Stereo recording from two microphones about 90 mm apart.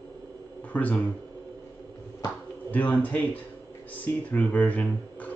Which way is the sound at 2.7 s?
15° left (ahead or behind).